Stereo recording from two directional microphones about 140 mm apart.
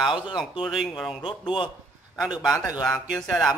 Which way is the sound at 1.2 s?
35° left (ahead or behind).